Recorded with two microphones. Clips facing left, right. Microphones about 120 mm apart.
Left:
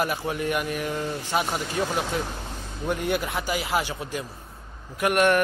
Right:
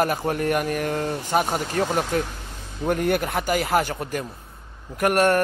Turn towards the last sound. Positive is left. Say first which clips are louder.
# right 2 dB
turn(degrees=-40)  # may be behind; listen again after turning